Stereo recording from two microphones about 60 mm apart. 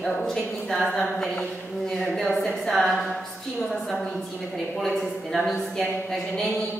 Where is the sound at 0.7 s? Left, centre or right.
Centre.